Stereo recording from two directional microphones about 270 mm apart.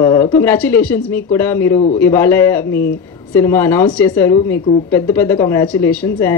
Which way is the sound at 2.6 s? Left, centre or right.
Left.